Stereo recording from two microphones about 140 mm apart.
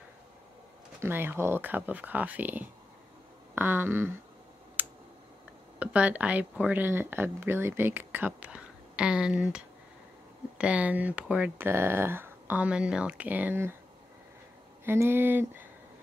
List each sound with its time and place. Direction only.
1.0 s speech: 15° right (ahead or behind)
4.8 s a sound: 15° right (ahead or behind)
5.8 s speech: 10° right (ahead or behind)
14.9 s speech: 15° right (ahead or behind)